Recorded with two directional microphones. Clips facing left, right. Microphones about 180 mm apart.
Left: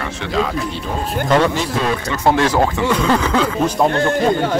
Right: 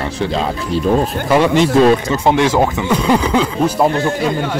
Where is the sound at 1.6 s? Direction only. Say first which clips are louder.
Right 9 dB; 30° right (ahead or behind); by 4.1 s 10° right (ahead or behind).